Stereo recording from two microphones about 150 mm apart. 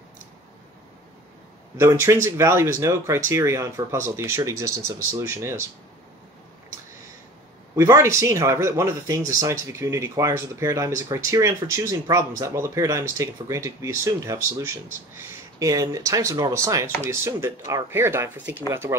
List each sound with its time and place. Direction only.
1.8 s speech: 15° right (ahead or behind)
7.7 s speech: 20° right (ahead or behind)